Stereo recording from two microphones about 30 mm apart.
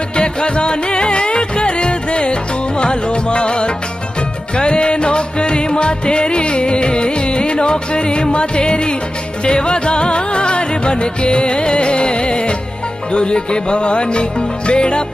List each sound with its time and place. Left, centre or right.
0.1 s music: left